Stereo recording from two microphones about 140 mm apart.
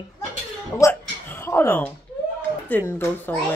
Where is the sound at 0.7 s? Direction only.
15° left (ahead or behind).